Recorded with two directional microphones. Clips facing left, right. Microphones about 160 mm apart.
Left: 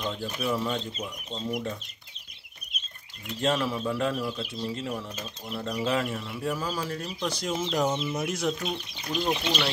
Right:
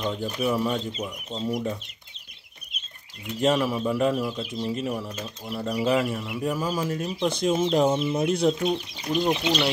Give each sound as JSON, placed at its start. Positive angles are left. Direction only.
{"t": 0.0, "sound": "speech", "side_deg": -15}
{"t": 3.3, "sound": "speech", "side_deg": -15}
{"t": 9.0, "sound": "speech", "side_deg": -15}